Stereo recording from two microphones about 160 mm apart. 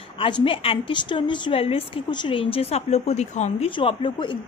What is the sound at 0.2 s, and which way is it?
A woman's voice, 35° left (ahead or behind).